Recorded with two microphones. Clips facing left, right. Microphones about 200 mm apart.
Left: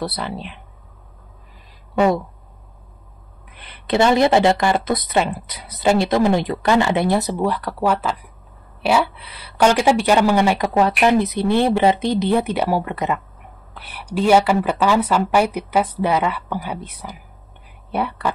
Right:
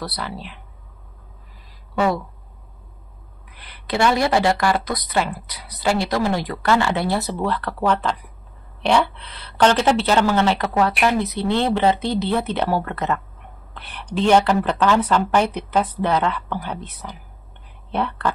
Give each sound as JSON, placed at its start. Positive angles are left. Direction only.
{"t": 0.0, "sound": "a woman's voice", "side_deg": 25}
{"t": 2.0, "sound": "a woman's voice", "side_deg": 20}
{"t": 3.5, "sound": "a woman's voice", "side_deg": 25}